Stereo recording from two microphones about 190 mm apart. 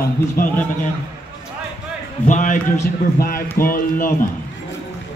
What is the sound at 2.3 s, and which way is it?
A man's voice, 40° left (ahead or behind).